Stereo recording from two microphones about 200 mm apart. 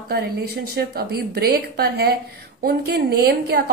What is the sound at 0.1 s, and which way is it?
A woman's voice, 50° right (ahead or behind).